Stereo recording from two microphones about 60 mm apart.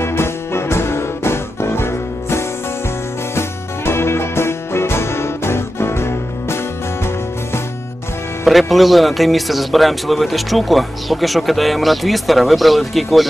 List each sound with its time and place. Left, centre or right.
0.0 s music: left
8.5 s a man's voice: centre